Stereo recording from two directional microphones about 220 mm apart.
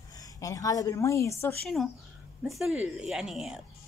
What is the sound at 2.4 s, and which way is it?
A woman's voice, centre (ahead or behind).